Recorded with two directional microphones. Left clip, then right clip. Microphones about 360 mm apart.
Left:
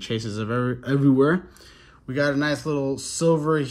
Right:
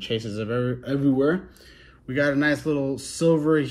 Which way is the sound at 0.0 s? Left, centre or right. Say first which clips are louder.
Right 1 dB; centre.